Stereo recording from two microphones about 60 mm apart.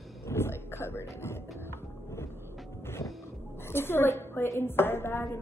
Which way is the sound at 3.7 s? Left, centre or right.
Left.